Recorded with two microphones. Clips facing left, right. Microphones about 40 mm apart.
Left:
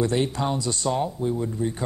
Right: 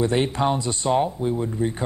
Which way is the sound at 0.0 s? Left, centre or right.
Right.